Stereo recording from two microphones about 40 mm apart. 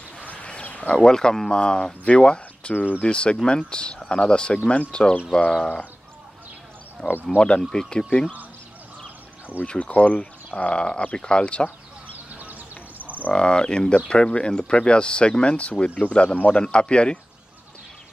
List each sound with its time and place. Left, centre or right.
0.4 s a sound: left
0.8 s speech: centre
2.7 s speech: left
3.0 s speech: left
7.2 s speech: left
9.7 s speech: left
12.4 s a sound: right
13.3 s a man's voice: left